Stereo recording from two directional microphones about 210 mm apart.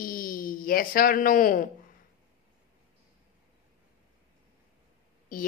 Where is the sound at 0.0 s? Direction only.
40° left (ahead or behind).